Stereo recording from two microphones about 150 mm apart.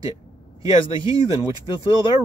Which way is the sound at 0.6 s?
20° right (ahead or behind).